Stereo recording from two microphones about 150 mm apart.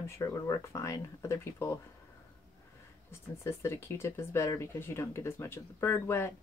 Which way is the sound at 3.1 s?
15° left (ahead or behind).